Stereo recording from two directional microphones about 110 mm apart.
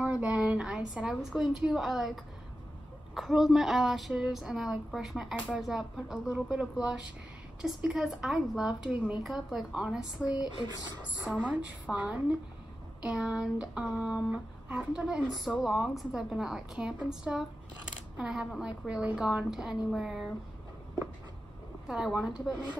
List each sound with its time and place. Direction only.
0.0 s a sound: 10° right (ahead or behind)
0.9 s speech: 5° right (ahead or behind)
3.2 s speech: 5° right (ahead or behind)
10.2 s speech: 35° left (ahead or behind)
11.4 s a woman's voice: 10° right (ahead or behind)
21.8 s speech: 5° right (ahead or behind)